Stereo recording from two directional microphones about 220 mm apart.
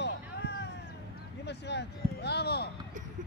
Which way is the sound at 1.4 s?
50° left (ahead or behind).